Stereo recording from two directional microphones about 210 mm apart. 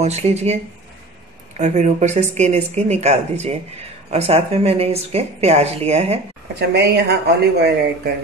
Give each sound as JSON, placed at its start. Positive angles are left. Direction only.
{"t": 0.0, "sound": "speech", "side_deg": -30}
{"t": 1.6, "sound": "speech", "side_deg": -35}
{"t": 6.7, "sound": "speech", "side_deg": -50}